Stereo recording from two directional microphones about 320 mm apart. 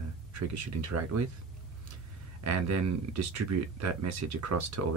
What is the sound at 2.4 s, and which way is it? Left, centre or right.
Speech, right.